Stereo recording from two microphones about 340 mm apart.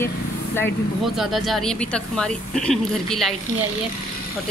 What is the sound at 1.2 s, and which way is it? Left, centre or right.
A woman's voice, centre.